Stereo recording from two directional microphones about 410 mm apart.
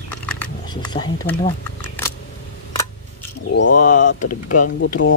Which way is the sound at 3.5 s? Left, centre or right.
Left.